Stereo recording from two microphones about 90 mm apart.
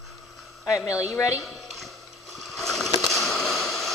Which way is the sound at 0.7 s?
40° left (ahead or behind).